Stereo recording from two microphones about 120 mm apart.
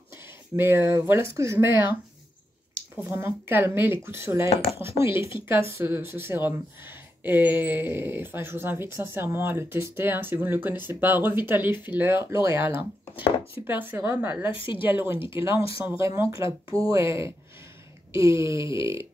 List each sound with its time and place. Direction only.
0.6 s speech: 20° right (ahead or behind)
3.1 s speech: 20° right (ahead or behind)
12.7 s speech: 45° left (ahead or behind)
13.7 s speech: 15° right (ahead or behind)
18.1 s speech: 25° right (ahead or behind)